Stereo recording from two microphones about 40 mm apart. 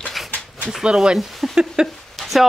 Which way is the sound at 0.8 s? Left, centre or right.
Centre.